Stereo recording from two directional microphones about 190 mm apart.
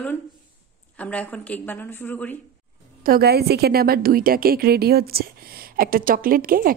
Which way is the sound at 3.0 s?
55° right (ahead or behind).